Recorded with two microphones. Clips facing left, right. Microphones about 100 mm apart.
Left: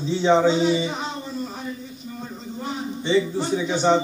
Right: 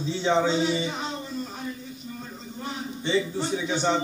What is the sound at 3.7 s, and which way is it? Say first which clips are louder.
Speech: left 6 dB; 20° left (ahead or behind).